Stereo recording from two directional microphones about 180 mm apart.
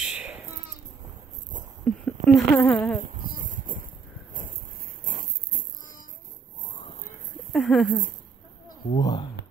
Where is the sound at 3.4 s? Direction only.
45° right (ahead or behind).